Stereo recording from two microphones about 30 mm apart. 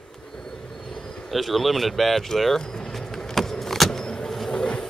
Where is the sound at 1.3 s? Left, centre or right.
Centre.